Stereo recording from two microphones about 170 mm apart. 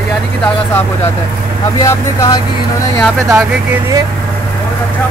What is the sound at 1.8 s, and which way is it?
Speech, 20° left (ahead or behind).